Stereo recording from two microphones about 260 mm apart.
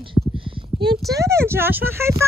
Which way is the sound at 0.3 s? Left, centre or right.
Centre.